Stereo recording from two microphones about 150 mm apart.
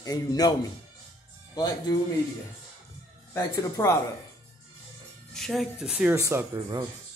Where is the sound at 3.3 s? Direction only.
20° left (ahead or behind).